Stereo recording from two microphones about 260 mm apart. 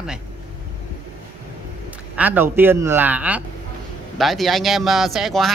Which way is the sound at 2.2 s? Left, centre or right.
Centre.